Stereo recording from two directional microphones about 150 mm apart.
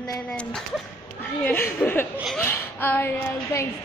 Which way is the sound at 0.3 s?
5° left (ahead or behind).